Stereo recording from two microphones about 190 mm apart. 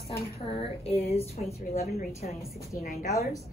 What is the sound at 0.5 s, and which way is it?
Speech, 30° left (ahead or behind).